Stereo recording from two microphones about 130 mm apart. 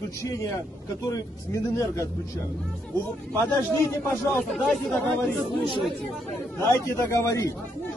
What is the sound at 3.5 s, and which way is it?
Speech, 25° left (ahead or behind).